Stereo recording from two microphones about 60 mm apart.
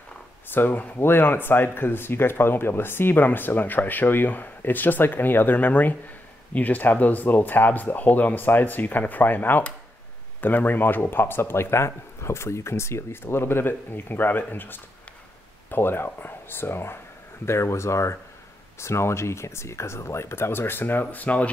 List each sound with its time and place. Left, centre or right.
0.5 s speech: left